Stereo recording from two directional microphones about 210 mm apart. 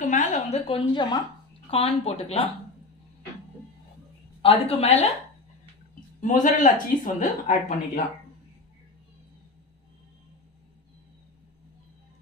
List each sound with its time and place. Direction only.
0.0 s a woman's voice: 35° left (ahead or behind)
4.4 s speech: 25° left (ahead or behind)
6.2 s speech: 40° left (ahead or behind)